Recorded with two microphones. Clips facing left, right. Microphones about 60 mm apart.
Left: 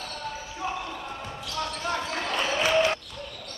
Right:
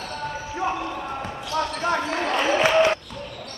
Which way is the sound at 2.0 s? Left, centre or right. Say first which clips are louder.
Right 6 dB; right.